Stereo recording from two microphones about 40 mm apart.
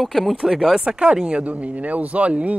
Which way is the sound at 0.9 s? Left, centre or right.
Right.